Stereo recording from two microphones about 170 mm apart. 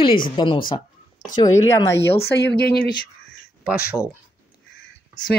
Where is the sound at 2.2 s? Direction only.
85° left.